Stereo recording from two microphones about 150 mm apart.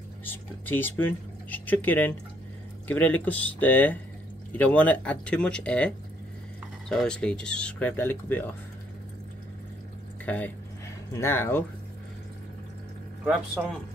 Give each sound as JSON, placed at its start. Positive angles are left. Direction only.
{"t": 0.2, "sound": "speech", "side_deg": 15}
{"t": 10.2, "sound": "speech", "side_deg": 10}
{"t": 13.2, "sound": "speech", "side_deg": -15}